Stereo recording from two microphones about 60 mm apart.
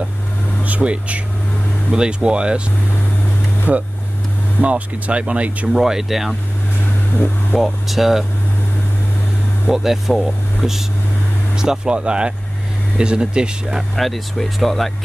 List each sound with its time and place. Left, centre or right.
0.7 s speech: right
3.7 s speech: right
5.7 s speech: centre
7.5 s speech: centre
9.7 s speech: centre
13.9 s speech: centre